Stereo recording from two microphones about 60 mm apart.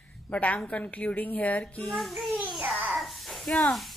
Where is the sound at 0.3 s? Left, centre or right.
Left.